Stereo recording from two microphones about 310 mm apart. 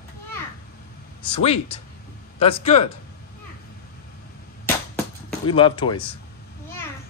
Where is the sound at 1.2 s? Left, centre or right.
Centre.